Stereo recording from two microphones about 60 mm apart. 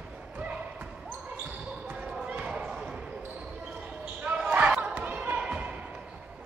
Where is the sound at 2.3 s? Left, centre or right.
Right.